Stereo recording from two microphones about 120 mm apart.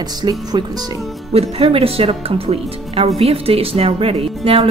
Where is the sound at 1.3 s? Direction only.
55° right (ahead or behind).